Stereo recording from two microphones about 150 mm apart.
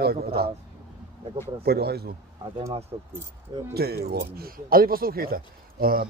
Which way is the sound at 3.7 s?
90° right.